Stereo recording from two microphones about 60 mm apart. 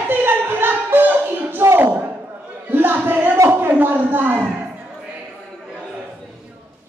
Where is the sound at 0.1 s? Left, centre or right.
Right.